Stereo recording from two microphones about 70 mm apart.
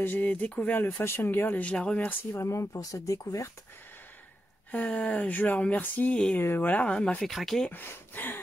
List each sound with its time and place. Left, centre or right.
0.0 s speech: left
0.7 s speech: left; by 2.0 s centre
2.0 s speech: left
4.6 s speech: left
7.2 s speech: centre
7.7 s speech: left